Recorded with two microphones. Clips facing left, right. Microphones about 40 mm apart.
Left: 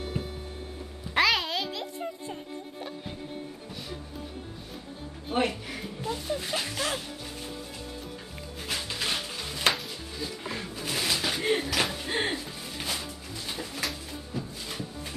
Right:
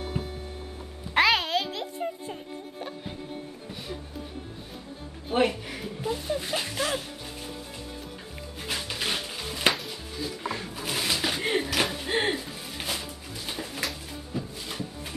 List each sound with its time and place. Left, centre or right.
1.1 s music: centre
5.3 s music: centre
8.6 s music: centre
10.7 s a sound: centre